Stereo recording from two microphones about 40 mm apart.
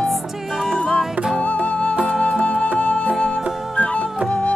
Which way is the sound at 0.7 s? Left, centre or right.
Centre.